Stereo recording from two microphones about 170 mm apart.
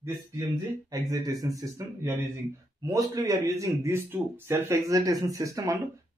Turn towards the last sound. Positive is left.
turn(degrees=-20)  # may be behind; listen again after turning